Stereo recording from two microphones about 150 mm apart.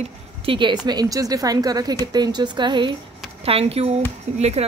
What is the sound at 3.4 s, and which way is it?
Speech, 40° right (ahead or behind).